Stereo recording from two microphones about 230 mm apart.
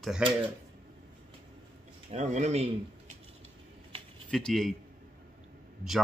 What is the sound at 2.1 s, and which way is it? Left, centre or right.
Speech, right.